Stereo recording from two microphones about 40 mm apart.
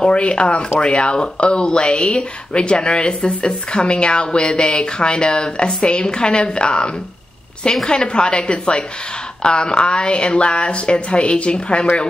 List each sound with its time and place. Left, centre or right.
0.0 s speech: left